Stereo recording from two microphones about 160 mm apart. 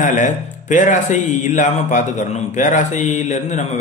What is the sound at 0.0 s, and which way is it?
A man's voice, 50° left (ahead or behind).